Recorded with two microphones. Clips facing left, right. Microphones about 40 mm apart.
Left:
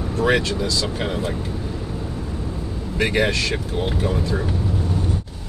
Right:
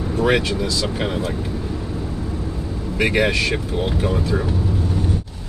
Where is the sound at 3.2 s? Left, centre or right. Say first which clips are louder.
Right 1 dB; centre.